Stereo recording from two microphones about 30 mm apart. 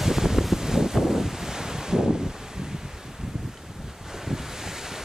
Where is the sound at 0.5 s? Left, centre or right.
Centre.